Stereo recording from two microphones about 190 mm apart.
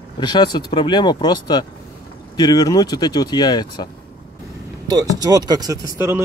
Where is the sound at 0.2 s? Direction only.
25° left (ahead or behind).